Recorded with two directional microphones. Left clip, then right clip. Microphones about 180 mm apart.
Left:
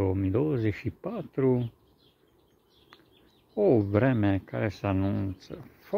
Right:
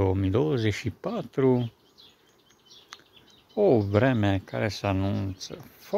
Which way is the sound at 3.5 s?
15° right (ahead or behind).